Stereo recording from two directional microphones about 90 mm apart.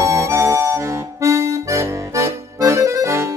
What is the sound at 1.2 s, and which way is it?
Accordion, 35° right (ahead or behind).